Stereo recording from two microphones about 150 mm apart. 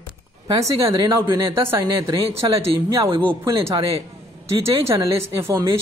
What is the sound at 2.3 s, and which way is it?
Speech, 40° right (ahead or behind).